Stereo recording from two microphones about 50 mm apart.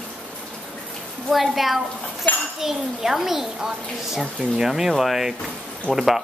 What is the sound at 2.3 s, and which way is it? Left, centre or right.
Speech, left.